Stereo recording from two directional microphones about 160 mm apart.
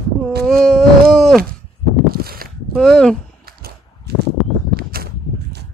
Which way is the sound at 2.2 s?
70° right (ahead or behind).